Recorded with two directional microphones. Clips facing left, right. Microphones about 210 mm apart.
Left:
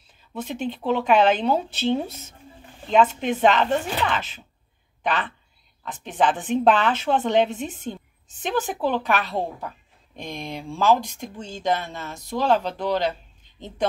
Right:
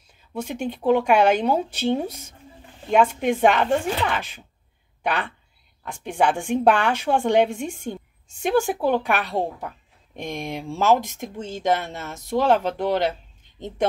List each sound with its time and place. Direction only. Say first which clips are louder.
0.3 s a woman's voice: right 1 dB; 10° right (ahead or behind)